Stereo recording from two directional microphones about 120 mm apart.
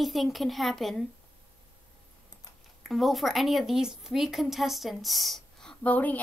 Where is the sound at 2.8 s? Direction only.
Centre (ahead or behind).